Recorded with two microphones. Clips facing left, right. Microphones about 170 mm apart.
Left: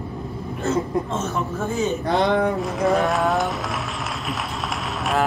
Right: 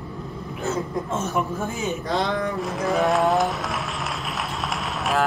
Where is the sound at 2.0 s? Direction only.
60° left (ahead or behind).